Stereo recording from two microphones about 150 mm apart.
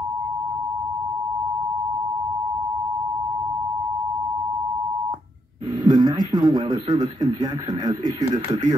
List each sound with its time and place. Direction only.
5.9 s a man's voice: 30° right (ahead or behind)